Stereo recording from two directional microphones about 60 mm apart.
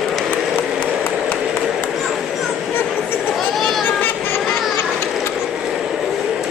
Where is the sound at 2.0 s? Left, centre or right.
Centre.